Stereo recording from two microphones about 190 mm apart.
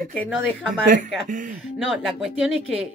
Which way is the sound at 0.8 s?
45° right (ahead or behind).